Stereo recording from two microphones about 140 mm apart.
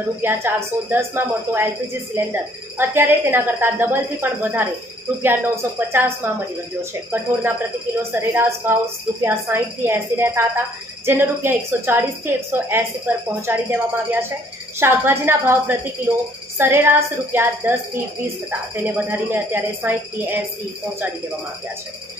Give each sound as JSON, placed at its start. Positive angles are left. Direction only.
{"t": 0.2, "sound": "a woman's voice", "side_deg": -15}
{"t": 2.8, "sound": "a woman's voice", "side_deg": -15}